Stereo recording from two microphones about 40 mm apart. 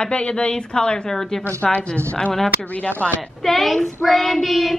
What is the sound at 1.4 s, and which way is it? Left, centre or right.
Speech, left.